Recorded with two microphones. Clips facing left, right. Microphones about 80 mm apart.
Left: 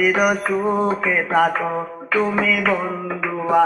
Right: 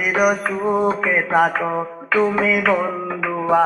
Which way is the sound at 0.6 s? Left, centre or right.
Centre.